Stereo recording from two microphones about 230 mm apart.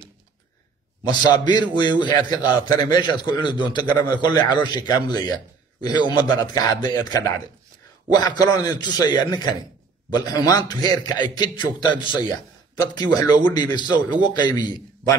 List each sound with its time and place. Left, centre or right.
1.0 s a man's voice: centre